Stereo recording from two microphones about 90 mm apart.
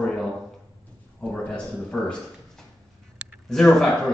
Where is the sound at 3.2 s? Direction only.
15° right (ahead or behind).